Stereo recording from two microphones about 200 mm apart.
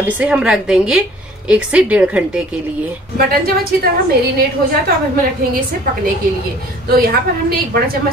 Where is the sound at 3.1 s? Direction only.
50° right (ahead or behind).